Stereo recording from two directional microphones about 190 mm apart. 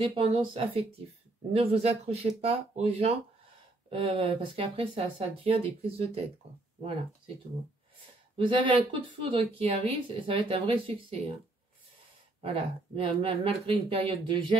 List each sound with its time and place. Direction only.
0.0 s speech: 25° right (ahead or behind)
8.4 s speech: 25° right (ahead or behind)
12.4 s speech: 30° right (ahead or behind)